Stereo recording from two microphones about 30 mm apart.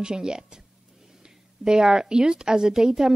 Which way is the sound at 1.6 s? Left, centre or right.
Right.